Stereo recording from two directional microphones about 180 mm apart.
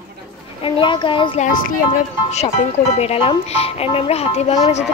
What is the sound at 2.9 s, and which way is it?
A child's voice, 35° left (ahead or behind).